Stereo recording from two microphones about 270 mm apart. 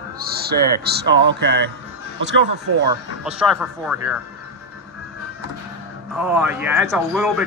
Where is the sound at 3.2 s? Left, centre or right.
Centre.